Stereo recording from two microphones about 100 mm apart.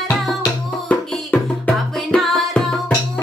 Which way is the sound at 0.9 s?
15° left (ahead or behind).